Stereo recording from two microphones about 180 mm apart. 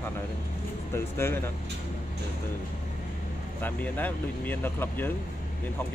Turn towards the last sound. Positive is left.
turn(degrees=10)  # may be behind; listen again after turning